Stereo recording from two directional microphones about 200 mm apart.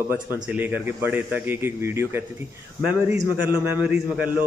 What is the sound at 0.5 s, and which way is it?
A man's voice, 10° right (ahead or behind).